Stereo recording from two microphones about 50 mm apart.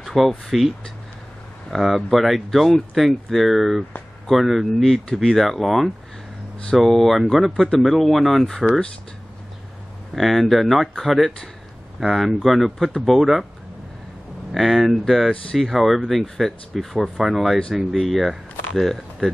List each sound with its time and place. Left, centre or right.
0.0 s a sound: centre
0.5 s speech: centre
10.1 s speech: centre
14.5 s speech: centre